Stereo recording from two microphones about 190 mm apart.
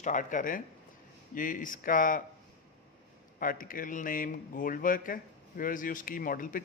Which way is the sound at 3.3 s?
45° left (ahead or behind).